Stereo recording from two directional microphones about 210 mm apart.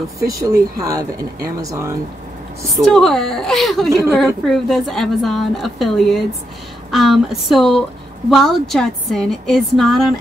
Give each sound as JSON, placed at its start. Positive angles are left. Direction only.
{"t": 0.2, "sound": "speech", "side_deg": -15}
{"t": 2.7, "sound": "a woman's voice", "side_deg": 0}